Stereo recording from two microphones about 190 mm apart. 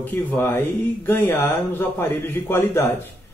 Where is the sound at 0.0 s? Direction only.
10° left (ahead or behind).